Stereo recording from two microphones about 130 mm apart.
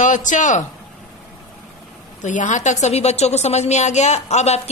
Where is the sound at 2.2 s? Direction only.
75° left (ahead or behind).